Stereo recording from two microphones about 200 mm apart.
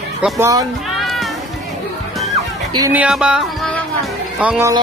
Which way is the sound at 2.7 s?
20° right (ahead or behind).